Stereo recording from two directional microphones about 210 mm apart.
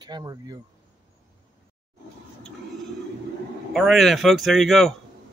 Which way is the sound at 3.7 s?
Centre (ahead or behind).